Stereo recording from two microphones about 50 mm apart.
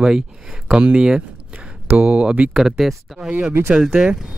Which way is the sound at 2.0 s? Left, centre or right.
Right.